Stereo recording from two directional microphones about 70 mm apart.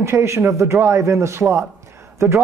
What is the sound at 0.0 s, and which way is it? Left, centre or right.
A woman's voice, right.